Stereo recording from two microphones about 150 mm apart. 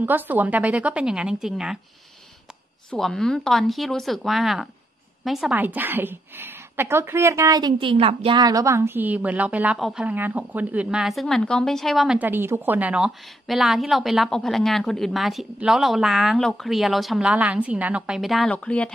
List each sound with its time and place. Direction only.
0.0 s a woman's voice: 10° right (ahead or behind)
2.9 s a woman's voice: 5° left (ahead or behind); by 8.4 s 40° right (ahead or behind)
8.4 s a woman's voice: 25° right (ahead or behind); by 12.2 s centre (ahead or behind)
12.2 s a woman's voice: 15° right (ahead or behind); by 18.9 s 10° left (ahead or behind)